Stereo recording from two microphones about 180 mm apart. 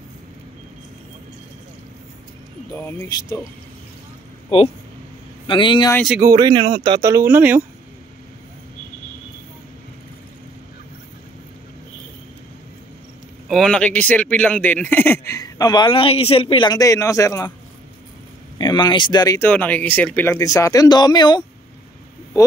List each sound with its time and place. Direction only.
2.7 s speech: 15° left (ahead or behind)
4.5 s speech: 30° left (ahead or behind)
5.9 s speech: centre (ahead or behind)
6.2 s speech: 20° right (ahead or behind)
7.0 s speech: 15° right (ahead or behind)
13.5 s speech: 5° left (ahead or behind)
18.6 s speech: 25° left (ahead or behind)